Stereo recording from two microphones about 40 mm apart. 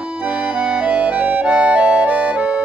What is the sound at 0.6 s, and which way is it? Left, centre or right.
Music, right.